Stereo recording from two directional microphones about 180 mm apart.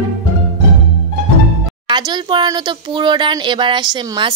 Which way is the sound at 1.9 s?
25° right (ahead or behind).